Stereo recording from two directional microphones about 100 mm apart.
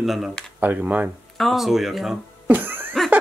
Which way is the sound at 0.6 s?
15° right (ahead or behind).